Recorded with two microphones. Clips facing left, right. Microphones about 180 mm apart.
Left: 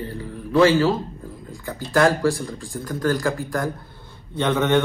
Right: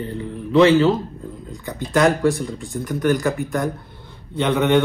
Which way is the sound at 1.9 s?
20° right (ahead or behind).